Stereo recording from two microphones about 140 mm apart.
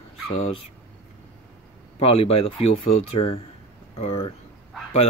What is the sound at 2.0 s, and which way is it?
Speech, 40° left (ahead or behind).